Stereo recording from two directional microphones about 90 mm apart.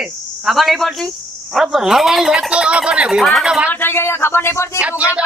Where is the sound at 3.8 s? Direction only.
25° left (ahead or behind).